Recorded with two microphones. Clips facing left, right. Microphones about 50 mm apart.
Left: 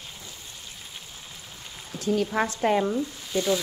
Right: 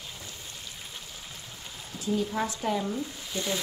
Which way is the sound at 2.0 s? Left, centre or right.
Left.